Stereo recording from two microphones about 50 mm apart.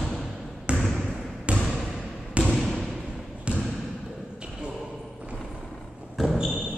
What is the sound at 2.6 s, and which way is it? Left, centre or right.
Basketball bounce, centre.